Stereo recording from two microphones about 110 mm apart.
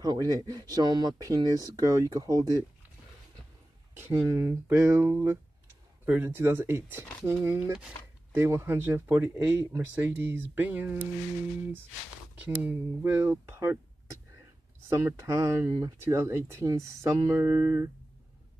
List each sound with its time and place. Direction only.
0.0 s speech: 35° right (ahead or behind)
4.0 s speech: 20° right (ahead or behind)
12.4 s speech: 15° right (ahead or behind)